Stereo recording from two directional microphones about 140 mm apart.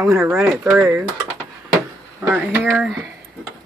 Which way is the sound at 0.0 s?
20° right (ahead or behind).